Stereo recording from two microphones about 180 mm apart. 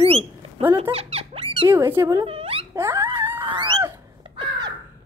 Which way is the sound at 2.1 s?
30° right (ahead or behind).